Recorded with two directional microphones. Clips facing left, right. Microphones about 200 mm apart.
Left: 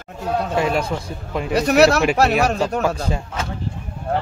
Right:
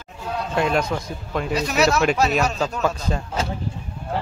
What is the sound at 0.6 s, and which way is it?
Speech, 5° left (ahead or behind).